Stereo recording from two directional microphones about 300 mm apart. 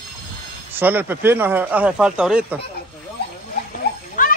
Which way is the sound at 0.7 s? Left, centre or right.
Centre.